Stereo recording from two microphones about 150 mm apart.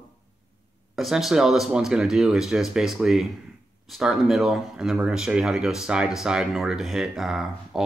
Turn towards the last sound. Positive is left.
turn(degrees=0)  # may be behind; listen again after turning